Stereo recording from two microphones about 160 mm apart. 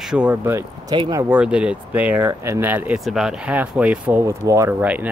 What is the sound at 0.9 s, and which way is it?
Speech, 25° right (ahead or behind).